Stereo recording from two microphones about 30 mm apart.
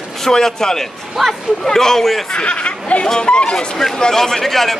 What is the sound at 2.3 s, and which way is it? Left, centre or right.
Speech, left.